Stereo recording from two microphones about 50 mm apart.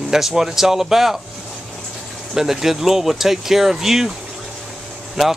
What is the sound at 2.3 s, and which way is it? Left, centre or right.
Speech, centre.